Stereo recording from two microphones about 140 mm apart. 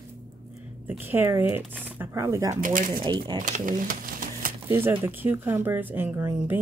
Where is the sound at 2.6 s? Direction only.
75° right (ahead or behind).